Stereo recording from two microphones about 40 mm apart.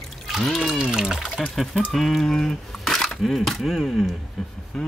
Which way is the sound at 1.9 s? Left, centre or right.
Centre.